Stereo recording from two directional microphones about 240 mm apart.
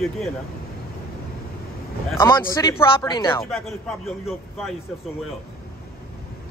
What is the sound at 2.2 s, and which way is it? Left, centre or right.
A man's voice, centre.